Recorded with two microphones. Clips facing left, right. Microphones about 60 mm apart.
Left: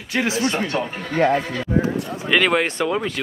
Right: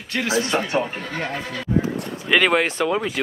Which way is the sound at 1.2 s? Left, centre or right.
Left.